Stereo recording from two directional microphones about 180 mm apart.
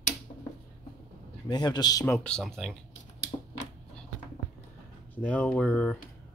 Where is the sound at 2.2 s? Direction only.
5° left (ahead or behind).